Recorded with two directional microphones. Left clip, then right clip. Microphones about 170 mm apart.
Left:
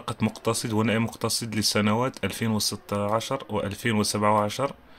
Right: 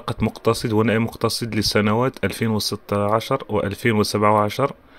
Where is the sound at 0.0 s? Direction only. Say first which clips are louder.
Right 6 dB; 35° right (ahead or behind).